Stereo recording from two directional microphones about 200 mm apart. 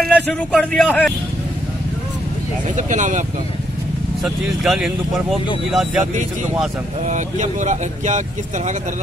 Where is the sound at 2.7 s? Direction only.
40° right (ahead or behind).